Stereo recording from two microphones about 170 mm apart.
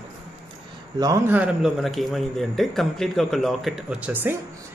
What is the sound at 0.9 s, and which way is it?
Speech, 15° right (ahead or behind).